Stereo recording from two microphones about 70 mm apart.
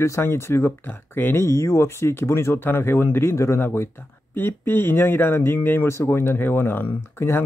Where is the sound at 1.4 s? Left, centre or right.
Left.